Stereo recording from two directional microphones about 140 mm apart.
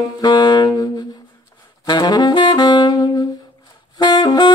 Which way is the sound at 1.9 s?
30° left (ahead or behind).